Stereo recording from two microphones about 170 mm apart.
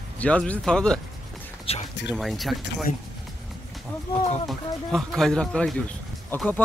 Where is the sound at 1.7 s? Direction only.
35° left (ahead or behind).